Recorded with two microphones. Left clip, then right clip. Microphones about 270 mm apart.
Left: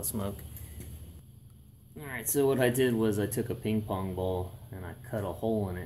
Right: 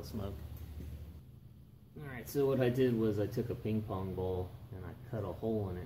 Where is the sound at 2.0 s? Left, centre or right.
Centre.